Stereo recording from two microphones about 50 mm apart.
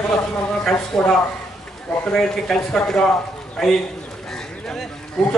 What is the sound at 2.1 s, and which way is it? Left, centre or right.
A man's voice, centre.